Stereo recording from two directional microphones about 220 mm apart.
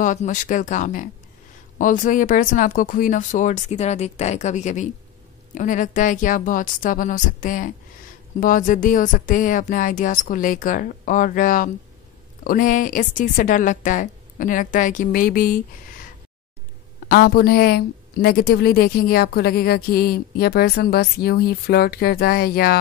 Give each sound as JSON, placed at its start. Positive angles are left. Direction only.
{"t": 0.0, "sound": "speech", "side_deg": 35}
{"t": 17.1, "sound": "a woman's voice", "side_deg": 45}